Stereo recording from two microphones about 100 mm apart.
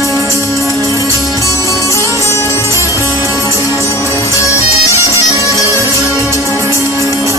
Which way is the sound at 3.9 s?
30° left (ahead or behind).